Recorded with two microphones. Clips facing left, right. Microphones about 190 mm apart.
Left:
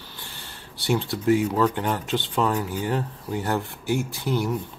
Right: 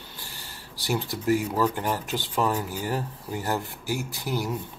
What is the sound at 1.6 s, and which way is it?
Speech, 5° right (ahead or behind).